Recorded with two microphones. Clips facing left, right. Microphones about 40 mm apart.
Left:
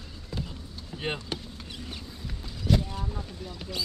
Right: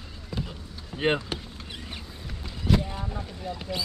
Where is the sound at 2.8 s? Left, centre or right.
Right.